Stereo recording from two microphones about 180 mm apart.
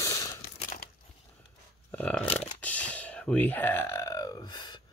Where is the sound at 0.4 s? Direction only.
55° left (ahead or behind).